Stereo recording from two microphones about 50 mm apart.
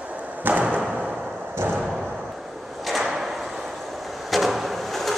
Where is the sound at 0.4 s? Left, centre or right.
Right.